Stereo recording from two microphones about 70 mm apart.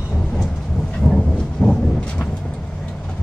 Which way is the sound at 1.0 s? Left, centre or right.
Centre.